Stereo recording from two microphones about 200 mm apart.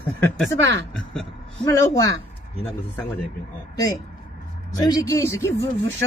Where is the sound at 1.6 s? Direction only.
15° left (ahead or behind).